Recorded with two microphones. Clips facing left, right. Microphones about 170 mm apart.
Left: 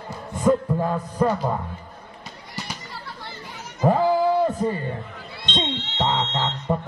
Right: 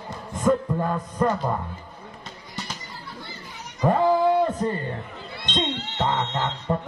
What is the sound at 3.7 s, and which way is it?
Goat, 5° left (ahead or behind).